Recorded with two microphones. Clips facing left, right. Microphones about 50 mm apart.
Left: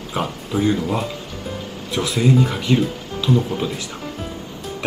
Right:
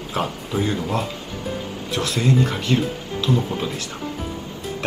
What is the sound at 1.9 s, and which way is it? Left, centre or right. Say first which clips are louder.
Speech: left 3 dB; centre.